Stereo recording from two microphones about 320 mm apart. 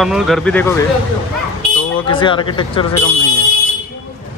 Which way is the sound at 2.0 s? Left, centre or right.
Centre.